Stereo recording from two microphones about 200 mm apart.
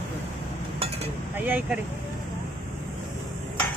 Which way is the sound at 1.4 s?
10° right (ahead or behind).